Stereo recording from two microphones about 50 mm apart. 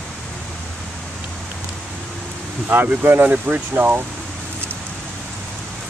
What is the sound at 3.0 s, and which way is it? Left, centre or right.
Speech, right.